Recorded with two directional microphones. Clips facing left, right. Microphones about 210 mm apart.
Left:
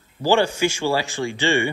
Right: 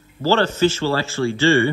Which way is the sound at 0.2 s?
15° left (ahead or behind).